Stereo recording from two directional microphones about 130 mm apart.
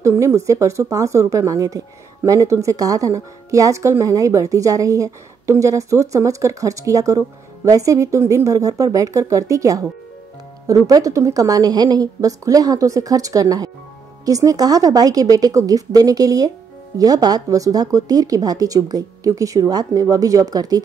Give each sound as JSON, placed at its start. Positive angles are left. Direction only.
{"t": 0.0, "sound": "speech", "side_deg": -20}